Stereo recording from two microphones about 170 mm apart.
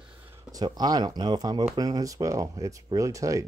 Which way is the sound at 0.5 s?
25° right (ahead or behind).